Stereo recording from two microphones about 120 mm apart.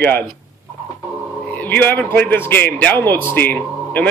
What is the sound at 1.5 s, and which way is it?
A man's voice, 15° left (ahead or behind).